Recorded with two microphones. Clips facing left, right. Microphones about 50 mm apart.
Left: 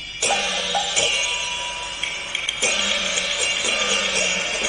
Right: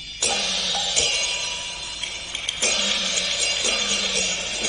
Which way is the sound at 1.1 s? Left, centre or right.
Centre.